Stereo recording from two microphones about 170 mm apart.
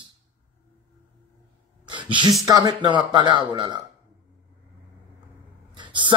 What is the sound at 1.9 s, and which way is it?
Speech, 30° right (ahead or behind).